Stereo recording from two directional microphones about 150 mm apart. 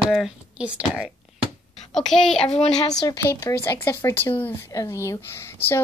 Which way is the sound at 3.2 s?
20° left (ahead or behind).